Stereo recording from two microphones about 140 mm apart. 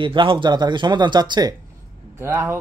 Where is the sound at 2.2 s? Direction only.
15° right (ahead or behind).